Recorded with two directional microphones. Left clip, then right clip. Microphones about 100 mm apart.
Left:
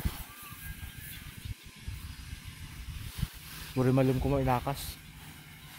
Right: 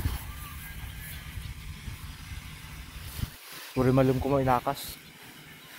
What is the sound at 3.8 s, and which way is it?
Speech, 15° left (ahead or behind).